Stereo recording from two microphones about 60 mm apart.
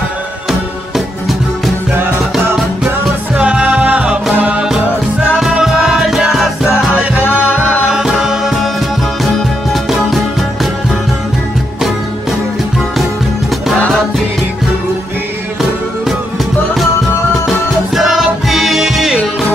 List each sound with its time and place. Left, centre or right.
3.3 s music: centre
7.9 s music: centre
17.5 s music: centre